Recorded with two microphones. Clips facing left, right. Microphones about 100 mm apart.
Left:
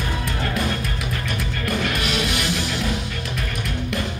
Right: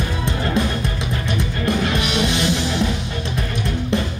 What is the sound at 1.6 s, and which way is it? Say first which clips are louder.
Music: right 4 dB; 25° right (ahead or behind).